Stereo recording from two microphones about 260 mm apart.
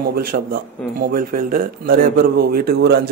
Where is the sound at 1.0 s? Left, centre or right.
Right.